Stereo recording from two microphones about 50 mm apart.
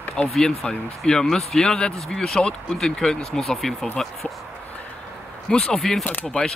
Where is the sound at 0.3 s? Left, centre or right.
Centre.